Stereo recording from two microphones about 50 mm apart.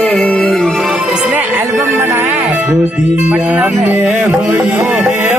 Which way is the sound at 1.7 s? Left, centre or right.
Right.